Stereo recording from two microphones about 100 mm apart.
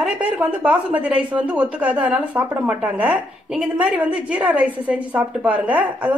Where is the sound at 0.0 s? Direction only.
15° right (ahead or behind).